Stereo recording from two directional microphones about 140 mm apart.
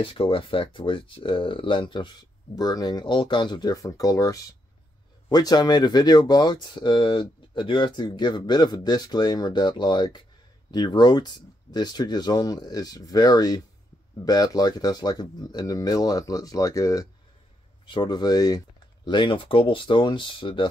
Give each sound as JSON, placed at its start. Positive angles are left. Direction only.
{"t": 0.0, "sound": "speech", "side_deg": 40}